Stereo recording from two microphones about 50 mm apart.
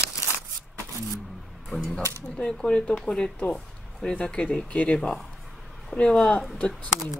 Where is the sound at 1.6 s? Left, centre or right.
Centre.